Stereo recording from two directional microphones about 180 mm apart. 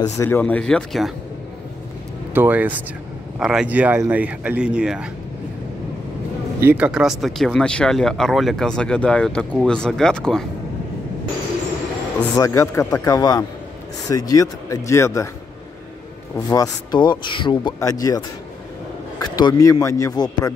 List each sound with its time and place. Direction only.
0.2 s speech: 10° left (ahead or behind)
2.3 s speech: 10° right (ahead or behind)
6.6 s speech: 10° right (ahead or behind)
12.4 s speech: 15° left (ahead or behind)
16.3 s speech: 20° left (ahead or behind)